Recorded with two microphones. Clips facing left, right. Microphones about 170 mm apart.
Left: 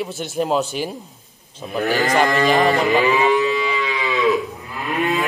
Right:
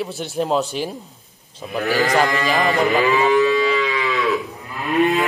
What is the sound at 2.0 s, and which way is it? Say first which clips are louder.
Speech: left 1 dB; centre (ahead or behind).